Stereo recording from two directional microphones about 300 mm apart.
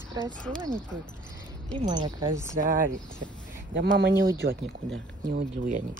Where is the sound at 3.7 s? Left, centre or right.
Right.